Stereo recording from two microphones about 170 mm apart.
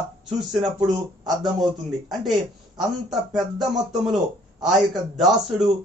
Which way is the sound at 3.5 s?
Centre (ahead or behind).